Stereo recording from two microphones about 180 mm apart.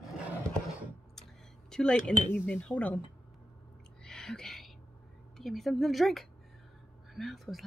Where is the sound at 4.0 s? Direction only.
5° left (ahead or behind).